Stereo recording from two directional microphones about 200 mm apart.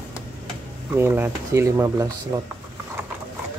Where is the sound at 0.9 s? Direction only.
10° right (ahead or behind).